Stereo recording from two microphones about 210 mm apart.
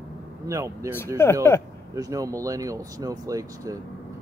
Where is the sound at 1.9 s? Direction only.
15° right (ahead or behind).